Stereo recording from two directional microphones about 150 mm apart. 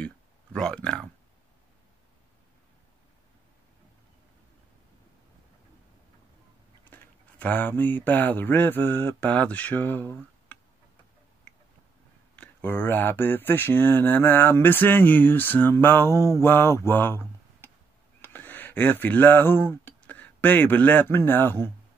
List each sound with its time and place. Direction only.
0.0 s a sound: 5° left (ahead or behind)
6.9 s speech: 10° left (ahead or behind)
12.4 s speech: 15° left (ahead or behind)